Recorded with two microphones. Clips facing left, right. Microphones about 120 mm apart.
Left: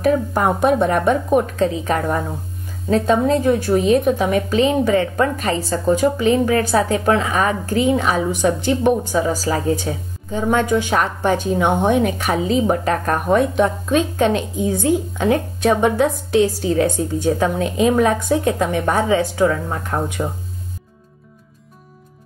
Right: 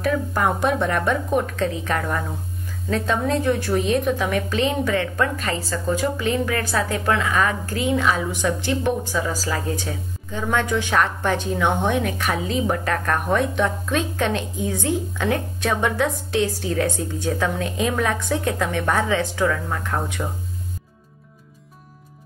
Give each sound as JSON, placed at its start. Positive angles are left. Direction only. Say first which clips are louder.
{"t": 0.1, "sound": "a woman's voice", "louder": "left 4 dB", "side_deg": 25}
{"t": 10.8, "sound": "a woman's voice", "louder": "left 2 dB", "side_deg": 20}